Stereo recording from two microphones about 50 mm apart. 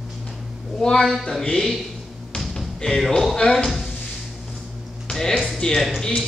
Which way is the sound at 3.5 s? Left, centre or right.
Centre.